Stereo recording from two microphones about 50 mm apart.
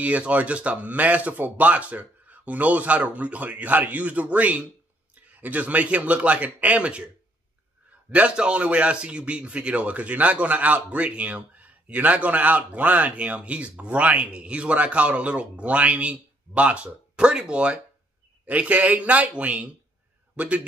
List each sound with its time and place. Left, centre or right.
0.0 s a man's voice: right
8.1 s a man's voice: right